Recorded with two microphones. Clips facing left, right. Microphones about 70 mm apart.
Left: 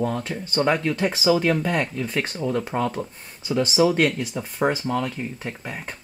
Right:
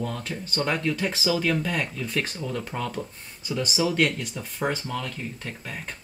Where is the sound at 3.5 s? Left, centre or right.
Left.